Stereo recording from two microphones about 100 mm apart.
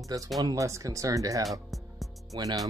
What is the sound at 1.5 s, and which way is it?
Music, centre (ahead or behind).